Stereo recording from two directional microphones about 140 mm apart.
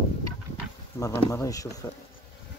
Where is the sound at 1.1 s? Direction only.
20° left (ahead or behind).